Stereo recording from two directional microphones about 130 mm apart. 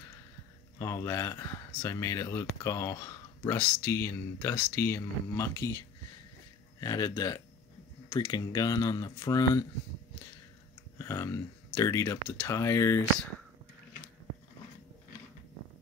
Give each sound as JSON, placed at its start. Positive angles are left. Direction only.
{"t": 0.7, "sound": "speech", "side_deg": 25}
{"t": 11.0, "sound": "speech", "side_deg": 25}